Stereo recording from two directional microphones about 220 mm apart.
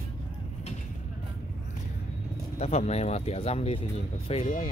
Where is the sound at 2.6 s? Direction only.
30° left (ahead or behind).